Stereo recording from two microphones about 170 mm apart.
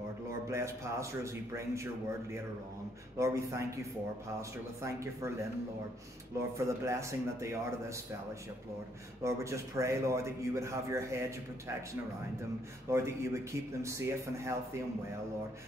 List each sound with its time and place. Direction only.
0.5 s a man's voice: 15° right (ahead or behind)
3.2 s a man's voice: 15° right (ahead or behind)
6.5 s a man's voice: 15° right (ahead or behind)
9.2 s a man's voice: 15° right (ahead or behind)